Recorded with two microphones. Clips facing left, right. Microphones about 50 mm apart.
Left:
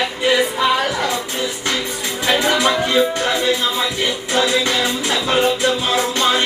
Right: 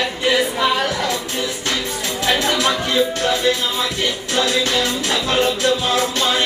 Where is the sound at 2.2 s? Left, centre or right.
Centre.